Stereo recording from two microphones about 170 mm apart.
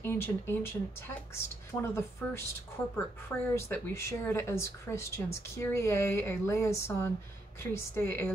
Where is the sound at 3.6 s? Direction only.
15° left (ahead or behind).